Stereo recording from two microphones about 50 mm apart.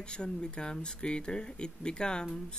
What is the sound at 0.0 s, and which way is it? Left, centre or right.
Speech, centre.